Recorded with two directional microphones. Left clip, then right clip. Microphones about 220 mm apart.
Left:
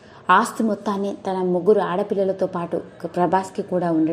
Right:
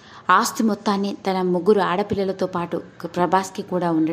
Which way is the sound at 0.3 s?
5° right (ahead or behind).